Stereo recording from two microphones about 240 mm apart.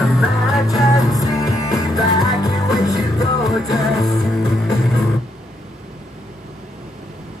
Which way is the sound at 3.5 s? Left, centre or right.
Centre.